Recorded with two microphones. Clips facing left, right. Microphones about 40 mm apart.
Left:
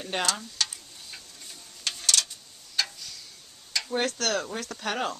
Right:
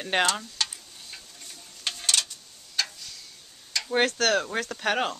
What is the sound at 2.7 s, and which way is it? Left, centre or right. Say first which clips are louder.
Tick-tock: even; centre.